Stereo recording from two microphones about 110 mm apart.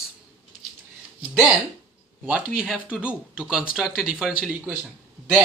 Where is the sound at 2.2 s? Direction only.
10° right (ahead or behind).